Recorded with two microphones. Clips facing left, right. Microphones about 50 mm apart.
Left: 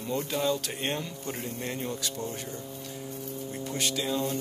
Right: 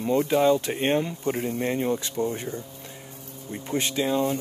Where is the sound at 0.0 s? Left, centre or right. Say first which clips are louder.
Right 9 dB; right.